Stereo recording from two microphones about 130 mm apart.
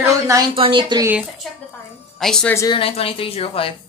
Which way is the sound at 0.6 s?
40° right (ahead or behind).